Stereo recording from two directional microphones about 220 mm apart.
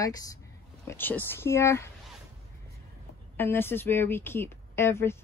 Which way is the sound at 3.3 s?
10° left (ahead or behind).